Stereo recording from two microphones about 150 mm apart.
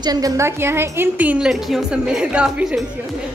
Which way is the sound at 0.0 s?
25° right (ahead or behind).